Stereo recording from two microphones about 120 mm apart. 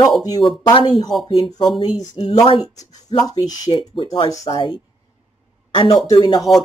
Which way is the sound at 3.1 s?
35° left (ahead or behind).